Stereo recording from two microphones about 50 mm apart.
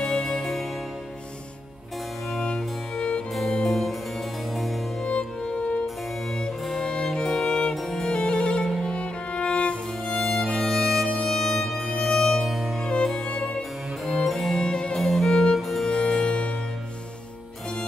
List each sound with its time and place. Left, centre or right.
0.0 s music: centre
2.3 s music: centre
3.3 s music: centre
5.0 s music: centre
6.3 s music: centre
10.1 s music: centre
12.8 s music: centre
13.6 s music: centre
14.7 s music: centre
15.0 s music: centre
15.9 s music: centre